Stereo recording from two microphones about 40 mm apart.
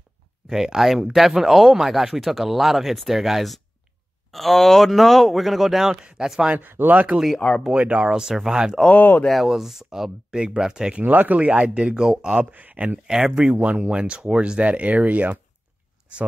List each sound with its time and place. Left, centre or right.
0.5 s speech: centre
6.2 s speech: right
6.6 s speech: right
7.3 s speech: centre
7.7 s speech: right
8.0 s speech: centre
8.9 s speech: left
9.3 s speech: centre
10.3 s speech: right
11.0 s speech: right
11.3 s speech: right
12.5 s speech: right
13.0 s speech: centre
13.3 s speech: right